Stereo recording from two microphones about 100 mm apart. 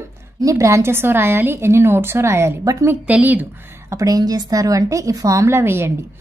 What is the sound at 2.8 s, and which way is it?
Speech, 15° right (ahead or behind).